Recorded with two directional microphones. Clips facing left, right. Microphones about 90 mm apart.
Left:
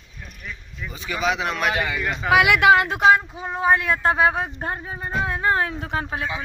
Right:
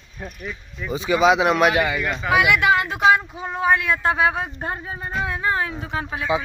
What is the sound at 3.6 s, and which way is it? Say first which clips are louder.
Speech: even; 35° left (ahead or behind).